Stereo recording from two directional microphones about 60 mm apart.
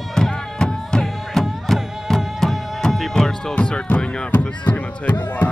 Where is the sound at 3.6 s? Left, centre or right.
Centre.